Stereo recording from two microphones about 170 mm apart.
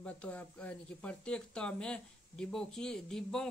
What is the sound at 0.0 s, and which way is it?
Speech, 5° left (ahead or behind).